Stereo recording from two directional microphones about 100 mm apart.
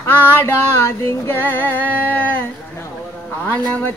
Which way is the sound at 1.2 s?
20° left (ahead or behind).